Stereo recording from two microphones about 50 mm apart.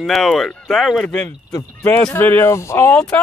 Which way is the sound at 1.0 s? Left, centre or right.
Centre.